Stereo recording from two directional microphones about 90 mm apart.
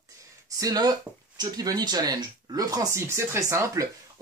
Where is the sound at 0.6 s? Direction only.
45° right (ahead or behind).